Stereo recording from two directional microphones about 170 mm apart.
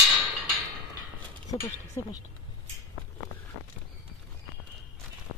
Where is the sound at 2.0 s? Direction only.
20° left (ahead or behind).